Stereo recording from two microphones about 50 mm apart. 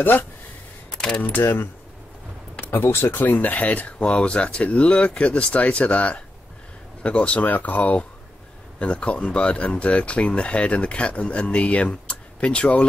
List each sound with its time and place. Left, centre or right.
0.9 s a sound: centre
2.6 s speech: left
3.1 s speech: left